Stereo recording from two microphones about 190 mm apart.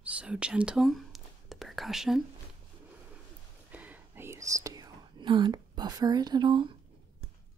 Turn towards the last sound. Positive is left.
turn(degrees=-25)  # may be behind; listen again after turning